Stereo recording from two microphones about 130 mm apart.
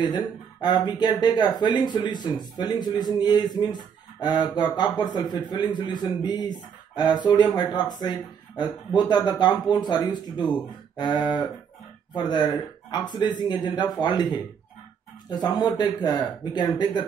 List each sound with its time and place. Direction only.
0.0 s speech: 35° left (ahead or behind)